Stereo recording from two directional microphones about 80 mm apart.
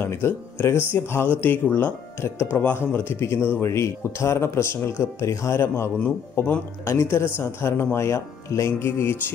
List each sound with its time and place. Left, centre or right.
0.0 s speech: left